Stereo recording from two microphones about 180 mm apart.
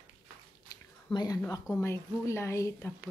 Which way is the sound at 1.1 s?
20° left (ahead or behind).